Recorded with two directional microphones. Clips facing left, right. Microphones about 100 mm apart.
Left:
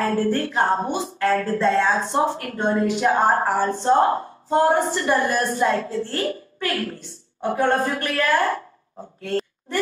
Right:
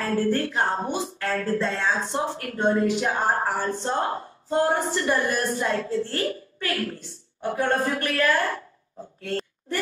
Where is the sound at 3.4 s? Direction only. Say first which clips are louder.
Left 5 dB; 50° left (ahead or behind).